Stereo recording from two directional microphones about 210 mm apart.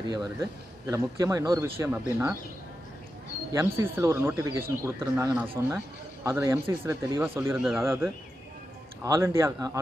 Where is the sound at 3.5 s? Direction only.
15° right (ahead or behind).